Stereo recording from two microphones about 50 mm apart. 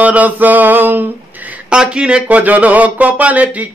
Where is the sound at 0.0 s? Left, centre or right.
Right.